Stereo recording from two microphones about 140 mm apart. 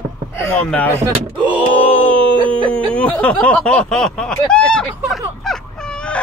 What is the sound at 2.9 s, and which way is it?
Snicker, 10° left (ahead or behind).